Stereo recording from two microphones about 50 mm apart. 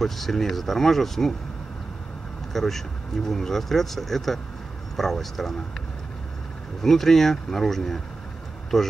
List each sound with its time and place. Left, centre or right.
0.0 s speech: centre
2.5 s speech: centre
6.8 s speech: centre